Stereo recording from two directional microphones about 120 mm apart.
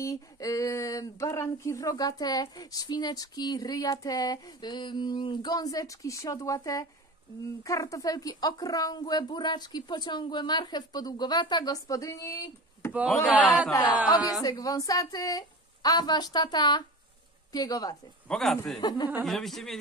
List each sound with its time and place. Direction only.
0.0 s speech: 30° left (ahead or behind)
18.3 s speech: 5° left (ahead or behind)
18.8 s speech: 35° left (ahead or behind)
19.2 s speech: centre (ahead or behind)